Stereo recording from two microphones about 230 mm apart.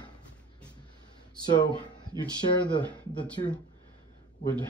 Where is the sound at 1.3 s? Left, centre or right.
Centre.